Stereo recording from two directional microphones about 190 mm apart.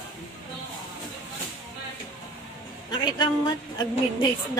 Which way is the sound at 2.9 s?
25° left (ahead or behind).